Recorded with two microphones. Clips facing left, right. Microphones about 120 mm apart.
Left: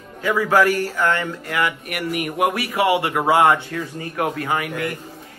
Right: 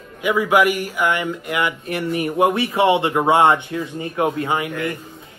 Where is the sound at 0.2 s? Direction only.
15° right (ahead or behind).